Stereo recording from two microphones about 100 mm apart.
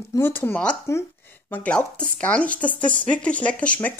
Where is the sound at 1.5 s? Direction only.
10° left (ahead or behind).